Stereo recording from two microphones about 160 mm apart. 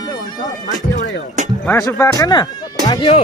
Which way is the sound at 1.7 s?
20° left (ahead or behind).